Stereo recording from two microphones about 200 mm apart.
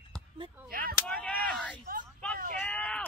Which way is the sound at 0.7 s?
50° right (ahead or behind).